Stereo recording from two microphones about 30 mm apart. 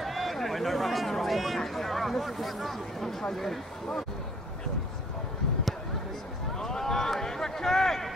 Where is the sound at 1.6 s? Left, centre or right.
Centre.